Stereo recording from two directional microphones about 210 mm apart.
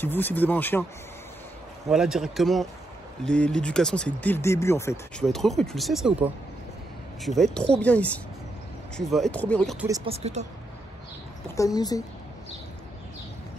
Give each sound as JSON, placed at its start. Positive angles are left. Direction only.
{"t": 0.0, "sound": "speech", "side_deg": 10}
{"t": 1.9, "sound": "speech", "side_deg": 0}
{"t": 5.2, "sound": "speech", "side_deg": 0}
{"t": 9.8, "sound": "speech", "side_deg": -15}
{"t": 10.0, "sound": "speech", "side_deg": -30}
{"t": 11.5, "sound": "speech", "side_deg": 15}